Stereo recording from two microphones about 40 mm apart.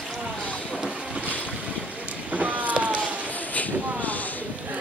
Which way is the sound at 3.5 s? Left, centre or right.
Left.